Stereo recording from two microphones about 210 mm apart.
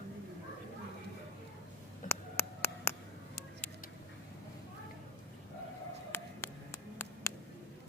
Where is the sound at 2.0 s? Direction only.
10° left (ahead or behind).